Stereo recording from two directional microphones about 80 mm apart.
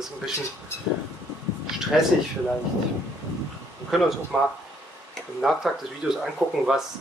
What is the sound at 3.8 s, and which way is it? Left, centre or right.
Speech, centre.